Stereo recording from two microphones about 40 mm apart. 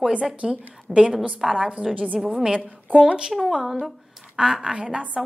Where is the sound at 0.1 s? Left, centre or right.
Right.